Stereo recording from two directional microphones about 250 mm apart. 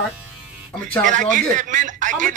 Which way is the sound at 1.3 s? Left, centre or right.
Right.